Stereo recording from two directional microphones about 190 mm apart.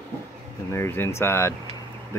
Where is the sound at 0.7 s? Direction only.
15° left (ahead or behind).